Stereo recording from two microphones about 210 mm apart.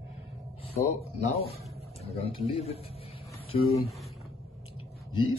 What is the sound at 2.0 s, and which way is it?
Speech, 30° left (ahead or behind).